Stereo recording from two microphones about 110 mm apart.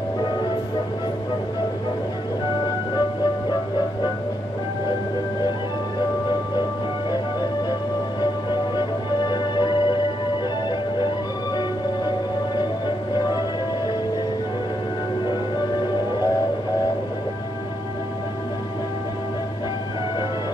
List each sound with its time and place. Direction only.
8.2 s music: 40° left (ahead or behind)